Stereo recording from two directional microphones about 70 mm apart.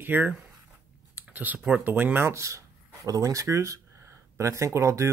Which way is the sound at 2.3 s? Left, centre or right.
Right.